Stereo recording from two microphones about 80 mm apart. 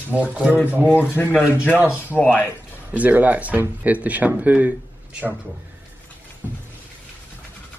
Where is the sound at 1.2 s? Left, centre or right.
Centre.